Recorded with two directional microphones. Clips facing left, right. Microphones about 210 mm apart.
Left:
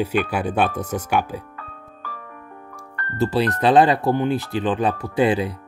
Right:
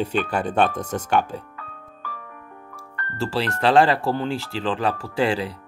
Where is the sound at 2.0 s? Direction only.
40° left (ahead or behind).